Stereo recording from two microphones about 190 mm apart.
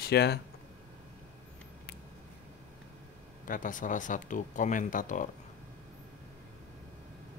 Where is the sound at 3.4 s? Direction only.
45° left (ahead or behind).